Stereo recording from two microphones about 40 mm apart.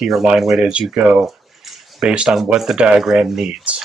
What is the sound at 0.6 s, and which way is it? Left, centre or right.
Speech, right.